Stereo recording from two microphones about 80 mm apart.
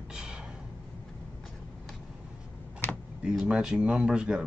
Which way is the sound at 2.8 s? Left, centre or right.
Left.